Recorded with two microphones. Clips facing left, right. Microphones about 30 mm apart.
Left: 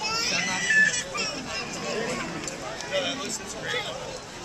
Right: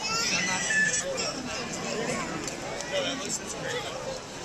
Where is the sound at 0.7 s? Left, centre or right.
Left.